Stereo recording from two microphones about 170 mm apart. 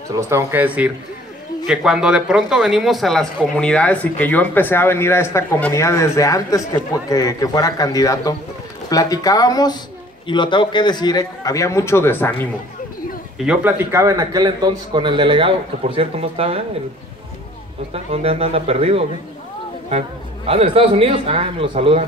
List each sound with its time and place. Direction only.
0.1 s a man's voice: 15° right (ahead or behind); by 12.4 s 10° left (ahead or behind)
13.4 s a man's voice: 10° right (ahead or behind); by 16.6 s 35° right (ahead or behind)
17.9 s a man's voice: 35° right (ahead or behind)
20.4 s a man's voice: 35° right (ahead or behind)